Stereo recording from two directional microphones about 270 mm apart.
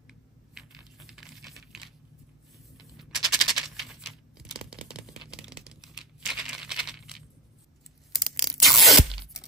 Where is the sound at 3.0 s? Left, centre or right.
Centre.